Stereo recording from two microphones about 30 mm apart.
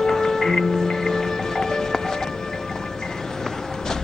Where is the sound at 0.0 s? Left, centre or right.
Centre.